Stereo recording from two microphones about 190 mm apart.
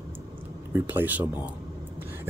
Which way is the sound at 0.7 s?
10° right (ahead or behind).